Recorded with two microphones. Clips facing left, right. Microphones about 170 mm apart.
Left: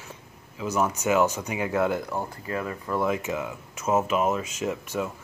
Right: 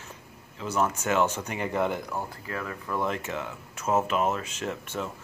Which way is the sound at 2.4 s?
20° left (ahead or behind).